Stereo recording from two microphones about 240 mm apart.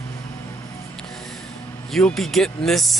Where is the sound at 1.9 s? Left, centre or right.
Centre.